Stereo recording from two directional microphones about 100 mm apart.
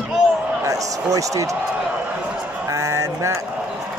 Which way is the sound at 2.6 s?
30° right (ahead or behind).